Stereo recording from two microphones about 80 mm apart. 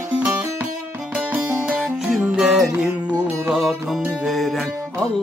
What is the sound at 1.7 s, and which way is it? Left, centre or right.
Music, centre.